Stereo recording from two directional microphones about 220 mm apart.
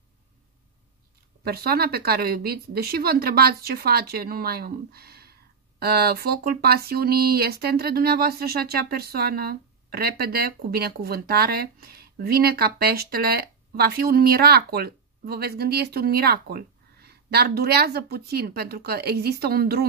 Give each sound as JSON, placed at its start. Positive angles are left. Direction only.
{"t": 1.4, "sound": "speech", "side_deg": -45}